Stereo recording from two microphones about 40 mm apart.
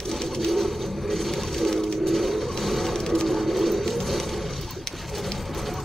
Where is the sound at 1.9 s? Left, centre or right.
Centre.